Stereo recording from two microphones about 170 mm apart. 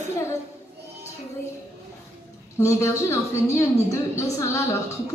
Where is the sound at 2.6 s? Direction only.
20° left (ahead or behind).